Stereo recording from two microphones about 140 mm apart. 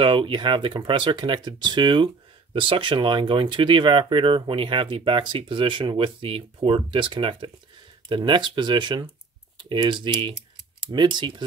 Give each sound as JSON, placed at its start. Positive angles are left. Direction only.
{"t": 0.0, "sound": "speech", "side_deg": -35}